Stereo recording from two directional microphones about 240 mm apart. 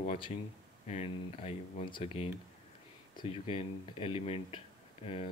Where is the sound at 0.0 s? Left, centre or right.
Left.